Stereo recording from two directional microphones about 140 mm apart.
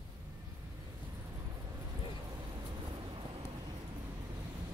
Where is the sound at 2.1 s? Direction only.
30° right (ahead or behind).